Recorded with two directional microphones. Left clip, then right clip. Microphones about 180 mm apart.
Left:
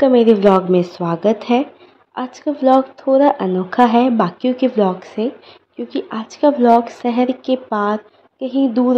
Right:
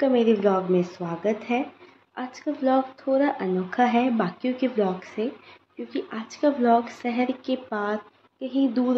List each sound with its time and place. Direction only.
0.0 s a woman's voice: 40° left (ahead or behind)